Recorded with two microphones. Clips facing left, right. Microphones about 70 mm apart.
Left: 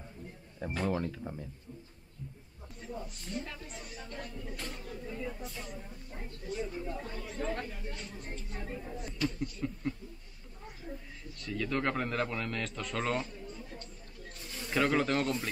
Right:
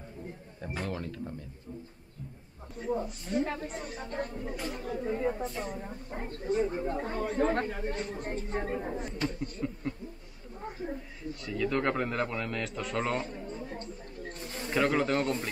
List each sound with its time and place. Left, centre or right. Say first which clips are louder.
0.8 s speech: left 6 dB; centre
2.8 s speech: right 10 dB; right
4.6 s speech: right 6 dB; centre
4.8 s speech: right 12 dB; right
9.6 s speech: right 3 dB; centre
11.3 s a man's voice: right 3 dB; centre
13.3 s a sound: right 6 dB; right
14.7 s a man's voice: right 2 dB; centre